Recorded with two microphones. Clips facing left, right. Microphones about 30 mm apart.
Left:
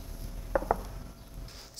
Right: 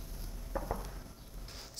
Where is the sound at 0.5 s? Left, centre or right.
Left.